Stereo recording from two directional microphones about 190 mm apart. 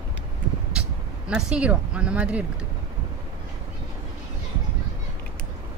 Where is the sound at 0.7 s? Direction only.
5° right (ahead or behind).